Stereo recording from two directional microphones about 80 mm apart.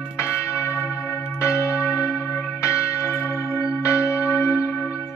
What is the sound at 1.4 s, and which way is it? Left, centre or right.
Church bell, left.